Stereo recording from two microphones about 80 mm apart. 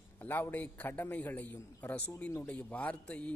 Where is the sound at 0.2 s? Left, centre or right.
Left.